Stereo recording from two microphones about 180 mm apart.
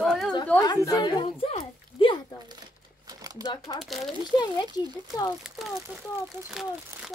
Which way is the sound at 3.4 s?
20° right (ahead or behind).